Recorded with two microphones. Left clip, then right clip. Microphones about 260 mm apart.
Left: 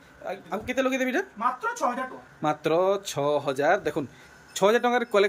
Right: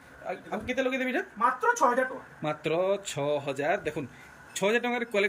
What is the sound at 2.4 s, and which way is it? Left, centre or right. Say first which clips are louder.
A man's voice: left 5 dB; centre.